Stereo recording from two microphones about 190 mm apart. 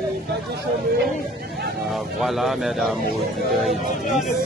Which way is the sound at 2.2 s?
Centre (ahead or behind).